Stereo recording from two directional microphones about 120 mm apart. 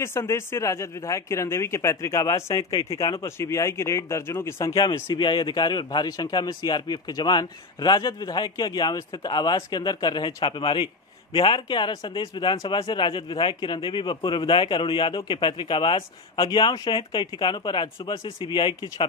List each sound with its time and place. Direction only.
0.0 s speech: 20° left (ahead or behind)
4.7 s a man's voice: 40° left (ahead or behind)